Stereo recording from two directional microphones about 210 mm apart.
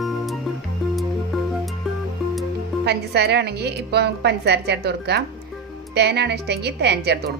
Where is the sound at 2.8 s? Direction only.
50° right (ahead or behind).